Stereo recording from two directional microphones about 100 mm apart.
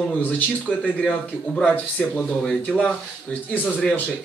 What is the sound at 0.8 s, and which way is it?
Speech, 15° left (ahead or behind).